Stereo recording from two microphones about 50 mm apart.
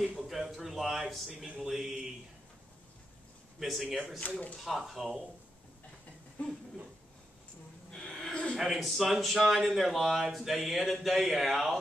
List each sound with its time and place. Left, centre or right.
0.0 s a sound: centre
1.3 s speech: centre
3.5 s a man's voice: centre
4.2 s speech: left
4.6 s speech: centre
7.9 s a sound: centre
8.5 s speech: centre